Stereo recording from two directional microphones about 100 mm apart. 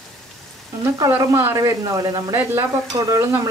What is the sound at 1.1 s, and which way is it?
Speech, 25° right (ahead or behind).